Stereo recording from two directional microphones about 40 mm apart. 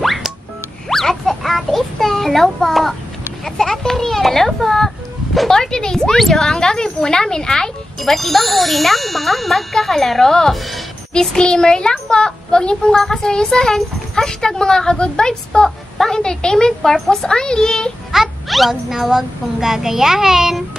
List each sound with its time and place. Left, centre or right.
0.0 s music: centre
0.8 s a sound: centre
5.5 s speech: centre
6.4 s speech: centre
8.0 s speech: centre
11.1 s a child's voice: left
12.9 s a child's voice: centre
18.1 s a child's voice: centre